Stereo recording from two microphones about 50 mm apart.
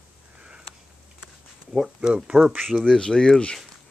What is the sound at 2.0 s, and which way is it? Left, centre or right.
Speech, centre.